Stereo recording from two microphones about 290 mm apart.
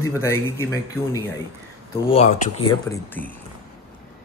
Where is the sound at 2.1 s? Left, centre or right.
Left.